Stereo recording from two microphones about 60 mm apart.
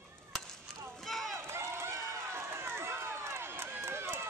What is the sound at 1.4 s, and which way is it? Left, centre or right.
Run, right.